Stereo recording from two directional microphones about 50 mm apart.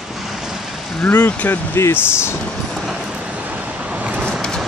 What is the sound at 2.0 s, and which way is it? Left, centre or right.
Speech, left.